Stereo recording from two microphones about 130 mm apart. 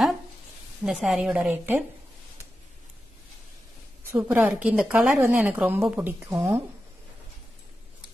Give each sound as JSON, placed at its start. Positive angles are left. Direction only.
{"t": 0.8, "sound": "speech", "side_deg": -5}
{"t": 4.1, "sound": "speech", "side_deg": -15}